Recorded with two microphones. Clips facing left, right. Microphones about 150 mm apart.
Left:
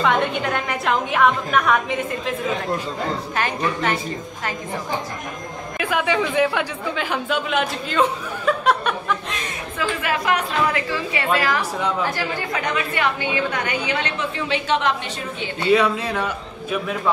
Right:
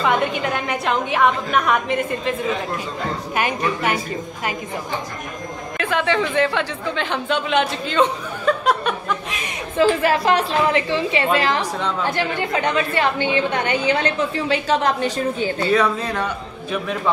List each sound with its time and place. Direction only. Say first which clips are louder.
0.0 s a woman's voice: even; centre (ahead or behind)
3.3 s a woman's voice: right 3 dB; 10° right (ahead or behind)
5.8 s a woman's voice: right 1 dB; 10° left (ahead or behind)
9.8 s a woman's voice: right 8 dB; 35° right (ahead or behind)
15.7 s a woman's voice: left 3 dB; 10° left (ahead or behind)